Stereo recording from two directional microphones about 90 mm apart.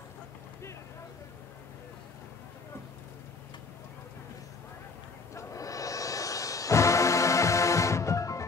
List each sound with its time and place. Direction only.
5.3 s music: 35° left (ahead or behind)